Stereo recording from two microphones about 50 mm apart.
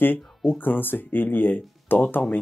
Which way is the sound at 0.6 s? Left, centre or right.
Left.